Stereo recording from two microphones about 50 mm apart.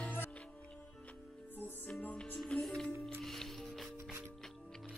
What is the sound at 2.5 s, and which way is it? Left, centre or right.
Music, centre.